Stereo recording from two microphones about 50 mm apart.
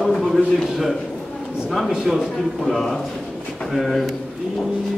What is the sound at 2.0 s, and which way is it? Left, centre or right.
A man's voice, centre.